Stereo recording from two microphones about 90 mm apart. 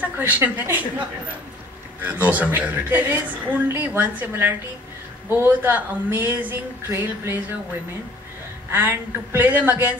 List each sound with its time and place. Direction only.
0.0 s a woman's voice: 20° right (ahead or behind)
2.0 s a woman's voice: 20° right (ahead or behind)
8.7 s a woman's voice: 20° right (ahead or behind)